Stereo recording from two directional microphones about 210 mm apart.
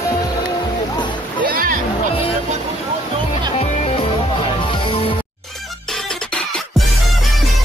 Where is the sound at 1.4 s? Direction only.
45° right (ahead or behind).